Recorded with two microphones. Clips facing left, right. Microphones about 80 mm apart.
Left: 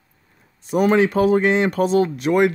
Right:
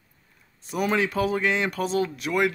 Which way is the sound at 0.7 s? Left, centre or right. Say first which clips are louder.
Left 8 dB; left.